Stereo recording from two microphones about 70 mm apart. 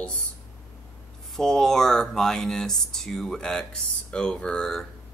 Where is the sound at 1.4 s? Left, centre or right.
Centre.